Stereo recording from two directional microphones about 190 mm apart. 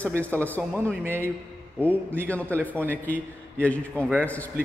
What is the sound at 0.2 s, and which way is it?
Speech, 10° left (ahead or behind).